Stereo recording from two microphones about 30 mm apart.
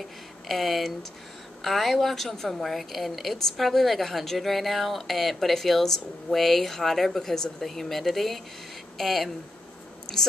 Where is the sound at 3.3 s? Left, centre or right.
Centre.